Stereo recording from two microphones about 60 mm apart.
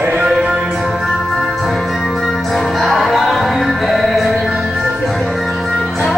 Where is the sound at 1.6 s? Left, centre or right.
Centre.